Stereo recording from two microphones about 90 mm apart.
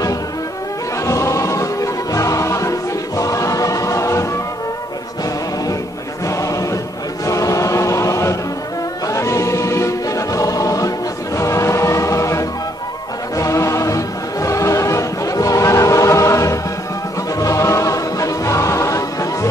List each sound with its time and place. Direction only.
1.0 s music: 35° left (ahead or behind)
6.2 s choir: 35° left (ahead or behind)
7.2 s chant: 35° left (ahead or behind)
9.0 s music: 35° left (ahead or behind)
13.4 s choir: 35° left (ahead or behind)
17.4 s music: 35° left (ahead or behind)